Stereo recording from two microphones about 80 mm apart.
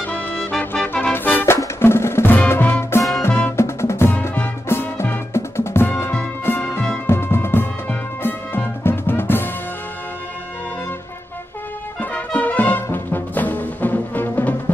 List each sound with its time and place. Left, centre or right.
0.0 s music: left
0.5 s music: centre
1.1 s music: left
1.4 s music: left
3.0 s music: left; by 7.0 s centre
7.1 s music: left
12.0 s music: centre